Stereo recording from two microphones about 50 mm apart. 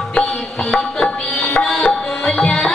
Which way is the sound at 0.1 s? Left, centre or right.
Centre.